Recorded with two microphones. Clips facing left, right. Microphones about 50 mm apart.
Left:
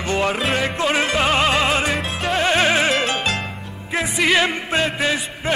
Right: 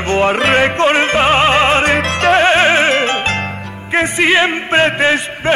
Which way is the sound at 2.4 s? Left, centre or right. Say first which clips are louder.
Right 2 dB; right.